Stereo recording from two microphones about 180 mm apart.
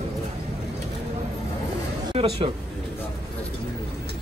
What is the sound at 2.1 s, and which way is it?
Speech, 30° right (ahead or behind).